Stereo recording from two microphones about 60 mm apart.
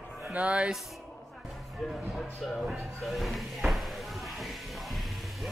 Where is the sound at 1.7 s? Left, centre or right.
Centre.